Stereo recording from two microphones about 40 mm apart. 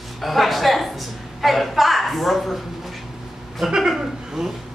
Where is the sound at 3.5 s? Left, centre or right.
Centre.